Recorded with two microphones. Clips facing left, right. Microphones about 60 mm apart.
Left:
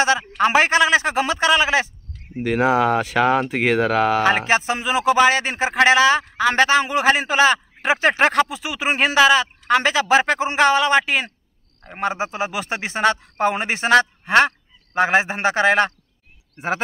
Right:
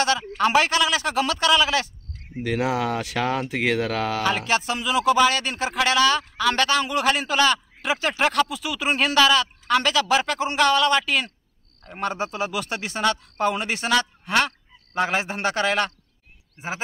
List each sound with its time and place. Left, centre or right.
0.4 s speech: left
3.7 s speech: centre
4.2 s speech: left
7.8 s speech: left
16.5 s speech: left